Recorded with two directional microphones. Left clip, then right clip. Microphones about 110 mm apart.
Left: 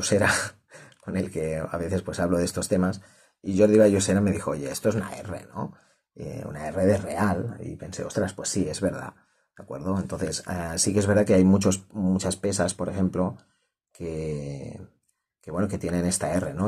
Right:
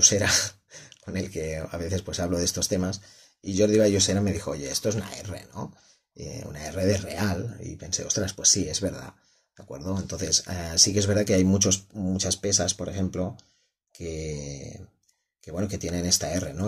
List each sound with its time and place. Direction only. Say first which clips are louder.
0.0 s speech: right 1 dB; 5° right (ahead or behind)
6.7 s speech: left 3 dB; 15° right (ahead or behind)
11.5 s speech: even; 5° left (ahead or behind)
11.9 s speech: left 4 dB; 10° right (ahead or behind)
12.2 s speech: right 2 dB; 5° left (ahead or behind)